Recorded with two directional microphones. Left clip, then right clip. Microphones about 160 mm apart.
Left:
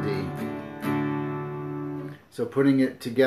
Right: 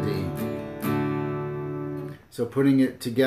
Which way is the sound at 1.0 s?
35° right (ahead or behind).